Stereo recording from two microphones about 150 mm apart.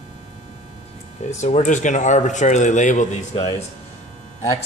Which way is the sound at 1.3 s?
50° left (ahead or behind).